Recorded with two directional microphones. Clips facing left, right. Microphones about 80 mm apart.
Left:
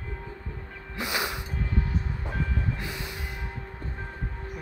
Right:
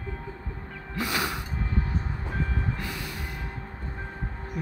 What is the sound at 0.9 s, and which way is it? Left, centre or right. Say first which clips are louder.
Music: right 2 dB; centre.